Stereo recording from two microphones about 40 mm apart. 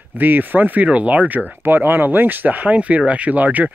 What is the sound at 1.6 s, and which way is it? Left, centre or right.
Speech, right.